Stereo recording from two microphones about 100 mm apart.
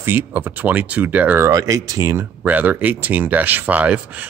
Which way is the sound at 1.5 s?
35° right (ahead or behind).